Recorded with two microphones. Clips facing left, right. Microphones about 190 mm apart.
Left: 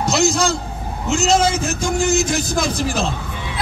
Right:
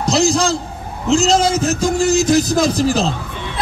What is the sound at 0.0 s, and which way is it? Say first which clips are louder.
A man's voice: right 2 dB; 35° right (ahead or behind).